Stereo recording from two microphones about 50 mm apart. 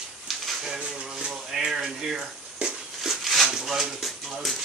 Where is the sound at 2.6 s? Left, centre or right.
Right.